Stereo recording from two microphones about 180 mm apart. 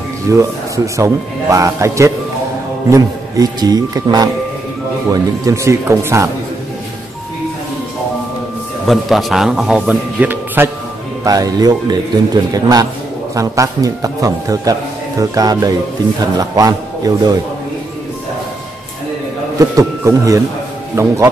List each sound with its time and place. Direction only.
0.3 s a man's voice: 15° right (ahead or behind)
8.8 s a man's voice: centre (ahead or behind); by 17.4 s 20° right (ahead or behind)
19.6 s a man's voice: 15° right (ahead or behind)